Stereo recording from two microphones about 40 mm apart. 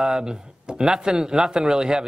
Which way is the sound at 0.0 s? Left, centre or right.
Centre.